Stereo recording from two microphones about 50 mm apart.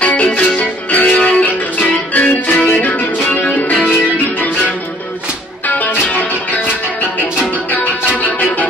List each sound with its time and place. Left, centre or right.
0.0 s music: left
5.7 s music: left
8.2 s music: left